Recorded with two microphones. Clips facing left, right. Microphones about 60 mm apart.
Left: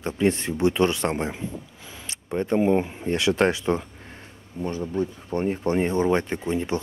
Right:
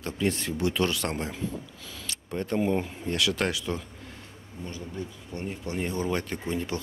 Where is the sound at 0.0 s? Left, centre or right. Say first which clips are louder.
Left 6 dB; left.